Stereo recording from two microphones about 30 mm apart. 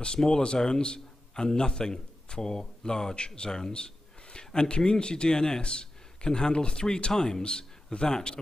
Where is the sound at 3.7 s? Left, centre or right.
Left.